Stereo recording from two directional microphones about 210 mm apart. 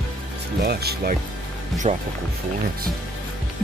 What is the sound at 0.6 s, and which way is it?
Speech, 50° right (ahead or behind).